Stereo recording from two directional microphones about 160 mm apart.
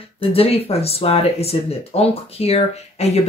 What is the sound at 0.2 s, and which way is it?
Speech, 35° left (ahead or behind).